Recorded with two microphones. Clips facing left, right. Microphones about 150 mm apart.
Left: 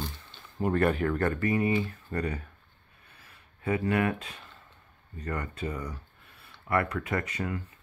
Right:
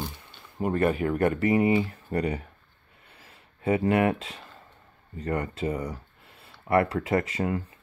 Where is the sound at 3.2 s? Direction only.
25° right (ahead or behind).